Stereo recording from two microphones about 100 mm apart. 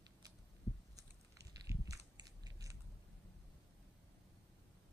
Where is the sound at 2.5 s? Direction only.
35° right (ahead or behind).